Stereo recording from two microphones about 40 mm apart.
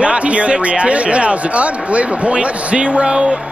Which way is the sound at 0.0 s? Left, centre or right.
Right.